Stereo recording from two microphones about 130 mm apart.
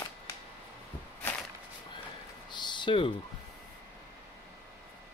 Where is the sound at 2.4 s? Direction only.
35° left (ahead or behind).